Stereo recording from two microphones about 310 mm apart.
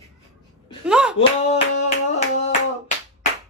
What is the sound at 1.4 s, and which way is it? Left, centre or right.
Hands, left.